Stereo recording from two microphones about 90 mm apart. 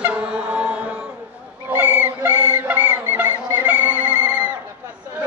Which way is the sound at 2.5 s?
15° right (ahead or behind).